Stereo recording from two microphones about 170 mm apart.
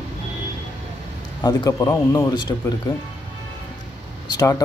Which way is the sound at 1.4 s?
25° left (ahead or behind).